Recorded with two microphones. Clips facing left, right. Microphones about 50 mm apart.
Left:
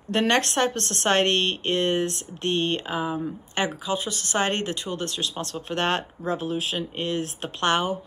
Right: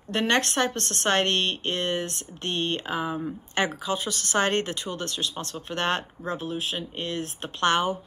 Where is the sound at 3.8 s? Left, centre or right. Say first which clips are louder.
Left 1 dB; left.